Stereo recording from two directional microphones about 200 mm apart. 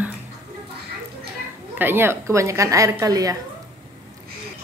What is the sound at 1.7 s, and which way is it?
A woman's voice, 10° right (ahead or behind).